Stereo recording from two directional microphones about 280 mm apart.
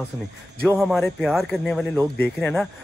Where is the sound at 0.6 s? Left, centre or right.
Centre.